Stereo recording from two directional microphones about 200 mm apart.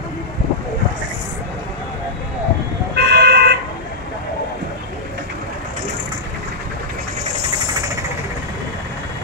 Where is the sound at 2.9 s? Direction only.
55° right (ahead or behind).